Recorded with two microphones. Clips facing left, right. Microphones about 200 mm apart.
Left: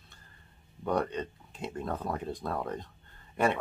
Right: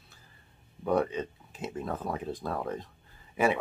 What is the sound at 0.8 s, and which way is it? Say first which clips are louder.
Speech: right 3 dB; centre (ahead or behind).